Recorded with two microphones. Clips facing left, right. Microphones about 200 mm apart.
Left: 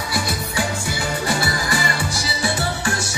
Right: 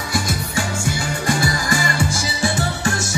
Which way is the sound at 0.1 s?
45° right (ahead or behind).